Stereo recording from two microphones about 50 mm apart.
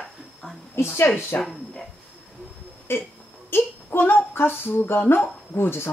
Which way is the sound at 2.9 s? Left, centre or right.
Left.